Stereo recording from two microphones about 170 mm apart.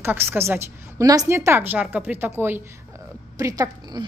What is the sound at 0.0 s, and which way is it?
A woman's voice, 15° right (ahead or behind).